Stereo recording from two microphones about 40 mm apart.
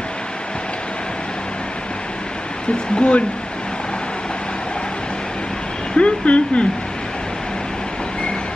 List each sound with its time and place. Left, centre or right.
3.0 s speech: left
5.9 s speech: left